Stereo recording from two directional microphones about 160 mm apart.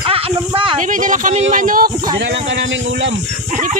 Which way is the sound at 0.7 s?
55° right (ahead or behind).